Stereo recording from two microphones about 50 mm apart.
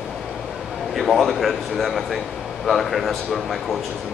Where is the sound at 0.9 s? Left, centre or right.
Centre.